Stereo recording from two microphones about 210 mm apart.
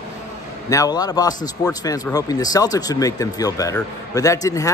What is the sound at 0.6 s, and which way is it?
Speech, 15° left (ahead or behind).